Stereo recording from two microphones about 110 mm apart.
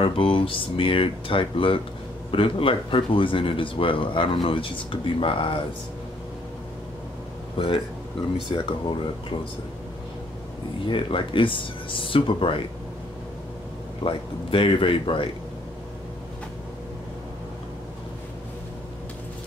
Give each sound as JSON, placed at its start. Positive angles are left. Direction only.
{"t": 0.0, "sound": "speech", "side_deg": 55}
{"t": 7.5, "sound": "a man's voice", "side_deg": 55}
{"t": 10.9, "sound": "speech", "side_deg": 50}
{"t": 14.0, "sound": "speech", "side_deg": 55}